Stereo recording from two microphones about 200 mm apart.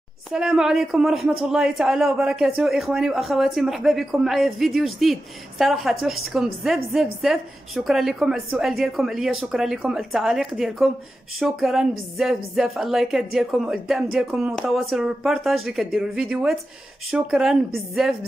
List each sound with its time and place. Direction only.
0.3 s a man's voice: centre (ahead or behind)